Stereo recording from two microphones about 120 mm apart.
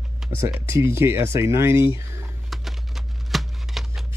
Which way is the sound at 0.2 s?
Centre (ahead or behind).